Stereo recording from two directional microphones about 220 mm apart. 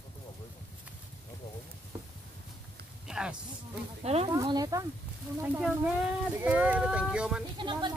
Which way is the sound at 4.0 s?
30° right (ahead or behind).